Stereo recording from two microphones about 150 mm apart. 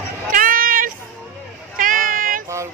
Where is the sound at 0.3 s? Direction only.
65° right (ahead or behind).